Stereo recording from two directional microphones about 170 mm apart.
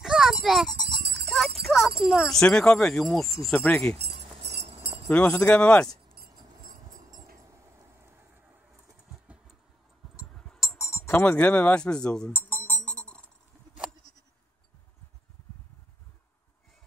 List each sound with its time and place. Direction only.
0.0 s sheep: centre (ahead or behind)
0.8 s jingle bell: 75° right (ahead or behind)
1.3 s speech: centre (ahead or behind)
4.4 s music: 85° right
5.1 s speech: 5° left (ahead or behind)
10.3 s a sound: centre (ahead or behind)
10.8 s chink: 15° left (ahead or behind)